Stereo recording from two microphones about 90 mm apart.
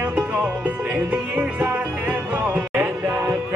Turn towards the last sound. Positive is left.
turn(degrees=-25)  # may be behind; listen again after turning